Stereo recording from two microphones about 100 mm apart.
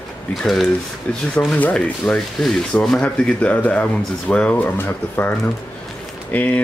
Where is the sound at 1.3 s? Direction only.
15° left (ahead or behind).